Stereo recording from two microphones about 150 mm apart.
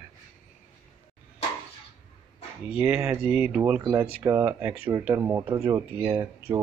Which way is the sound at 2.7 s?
10° right (ahead or behind).